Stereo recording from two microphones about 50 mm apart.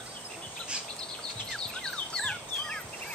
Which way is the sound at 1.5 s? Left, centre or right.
Centre.